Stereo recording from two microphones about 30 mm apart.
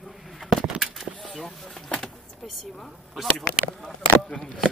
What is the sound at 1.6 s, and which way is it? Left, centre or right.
Vehicle, centre.